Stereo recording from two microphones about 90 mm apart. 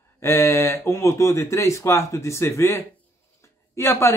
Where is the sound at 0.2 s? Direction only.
30° left (ahead or behind).